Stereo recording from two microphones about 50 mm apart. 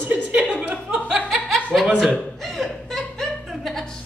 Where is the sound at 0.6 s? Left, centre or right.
Right.